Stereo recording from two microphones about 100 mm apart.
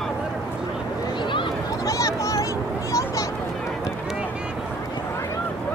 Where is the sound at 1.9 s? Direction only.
35° left (ahead or behind).